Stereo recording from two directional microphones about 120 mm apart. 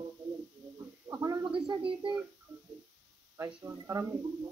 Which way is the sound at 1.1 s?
30° right (ahead or behind).